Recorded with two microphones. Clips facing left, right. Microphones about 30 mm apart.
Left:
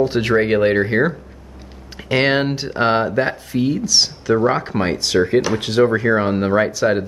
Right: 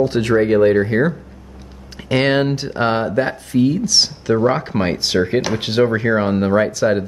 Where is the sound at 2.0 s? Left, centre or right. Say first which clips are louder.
Right 1 dB; centre.